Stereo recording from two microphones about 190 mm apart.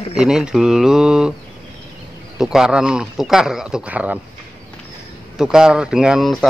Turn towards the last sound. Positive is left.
turn(degrees=0)  # may be behind; listen again after turning